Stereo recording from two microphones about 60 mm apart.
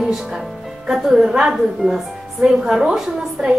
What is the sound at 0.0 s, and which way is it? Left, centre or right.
A woman's voice, centre.